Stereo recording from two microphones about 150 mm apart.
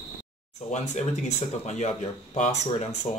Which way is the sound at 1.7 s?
50° left (ahead or behind).